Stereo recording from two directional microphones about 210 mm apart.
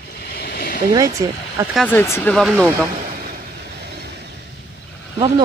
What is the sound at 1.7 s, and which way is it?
Speech, 10° left (ahead or behind).